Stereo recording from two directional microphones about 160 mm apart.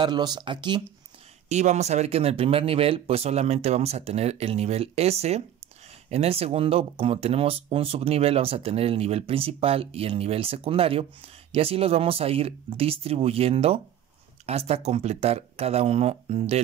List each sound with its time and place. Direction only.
0.0 s speech: 25° right (ahead or behind)
1.5 s speech: 45° right (ahead or behind)